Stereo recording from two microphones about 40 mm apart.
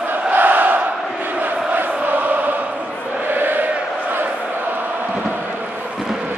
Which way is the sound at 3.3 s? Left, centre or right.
Right.